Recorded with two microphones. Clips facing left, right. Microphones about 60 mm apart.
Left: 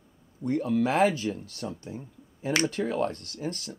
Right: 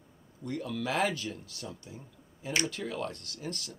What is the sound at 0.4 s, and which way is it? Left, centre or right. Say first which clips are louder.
Speech: left 10 dB; left.